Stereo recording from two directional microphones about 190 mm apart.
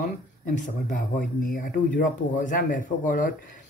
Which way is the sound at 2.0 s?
45° left (ahead or behind).